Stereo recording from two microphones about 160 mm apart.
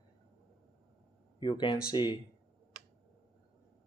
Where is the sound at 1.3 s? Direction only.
30° left (ahead or behind).